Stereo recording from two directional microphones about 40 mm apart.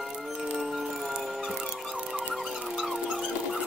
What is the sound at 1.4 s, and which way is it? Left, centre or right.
Music, centre.